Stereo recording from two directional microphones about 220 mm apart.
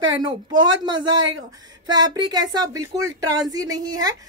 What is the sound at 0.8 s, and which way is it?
A man's voice, 20° right (ahead or behind).